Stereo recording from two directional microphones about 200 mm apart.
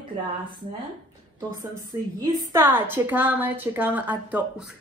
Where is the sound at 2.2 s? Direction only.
15° right (ahead or behind).